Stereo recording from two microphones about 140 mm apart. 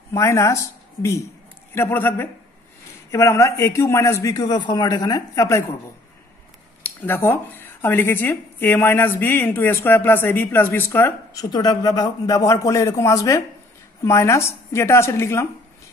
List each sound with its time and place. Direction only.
0.1 s a man's voice: 20° left (ahead or behind)
1.8 s a man's voice: 15° left (ahead or behind)
6.8 s speech: 15° left (ahead or behind)
11.5 s a man's voice: 30° left (ahead or behind)